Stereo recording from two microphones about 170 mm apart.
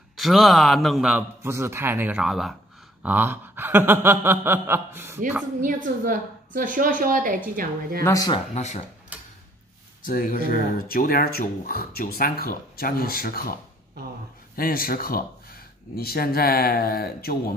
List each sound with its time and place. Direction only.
0.2 s a man's voice: centre (ahead or behind)
3.0 s chuckle: 10° right (ahead or behind)
5.6 s a woman's voice: 50° right (ahead or behind)
8.0 s speech: 20° left (ahead or behind)
8.5 s speech: 40° left (ahead or behind)
10.0 s speech: 55° left (ahead or behind)